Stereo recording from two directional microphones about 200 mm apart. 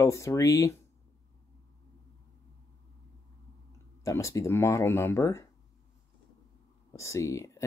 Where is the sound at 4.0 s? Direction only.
15° left (ahead or behind).